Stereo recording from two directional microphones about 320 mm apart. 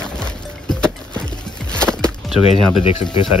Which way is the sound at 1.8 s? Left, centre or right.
Centre.